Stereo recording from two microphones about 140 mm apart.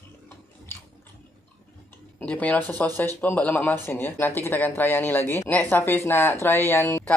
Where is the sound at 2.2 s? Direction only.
10° left (ahead or behind).